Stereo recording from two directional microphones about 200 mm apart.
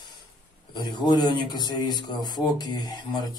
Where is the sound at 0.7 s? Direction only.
20° left (ahead or behind).